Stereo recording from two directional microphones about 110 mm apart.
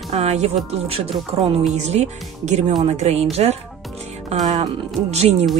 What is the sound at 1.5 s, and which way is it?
Speech, 85° right.